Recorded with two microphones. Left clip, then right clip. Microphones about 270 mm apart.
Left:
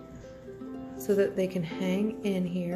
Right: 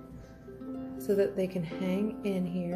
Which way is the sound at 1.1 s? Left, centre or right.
Centre.